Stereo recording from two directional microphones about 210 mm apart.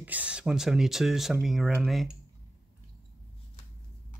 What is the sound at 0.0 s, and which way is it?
Speech, 5° right (ahead or behind).